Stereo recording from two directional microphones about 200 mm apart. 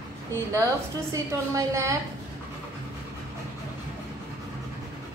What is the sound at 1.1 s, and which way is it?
Speech, 15° right (ahead or behind).